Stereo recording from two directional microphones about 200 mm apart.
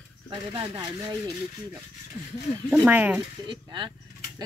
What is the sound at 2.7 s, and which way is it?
Speech, 10° right (ahead or behind).